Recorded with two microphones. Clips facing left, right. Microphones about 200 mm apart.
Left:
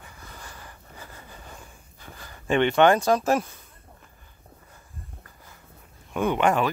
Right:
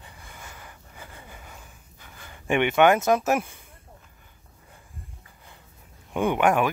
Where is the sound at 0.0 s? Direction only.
25° right (ahead or behind).